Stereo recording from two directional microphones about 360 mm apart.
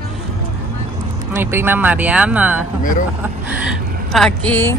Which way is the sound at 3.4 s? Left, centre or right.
Centre.